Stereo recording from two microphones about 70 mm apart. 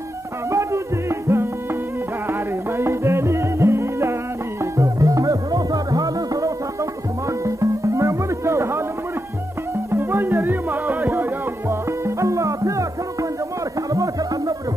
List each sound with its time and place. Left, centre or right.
1.2 s music: right
2.8 s music: right
9.8 s music: right
12.2 s music: right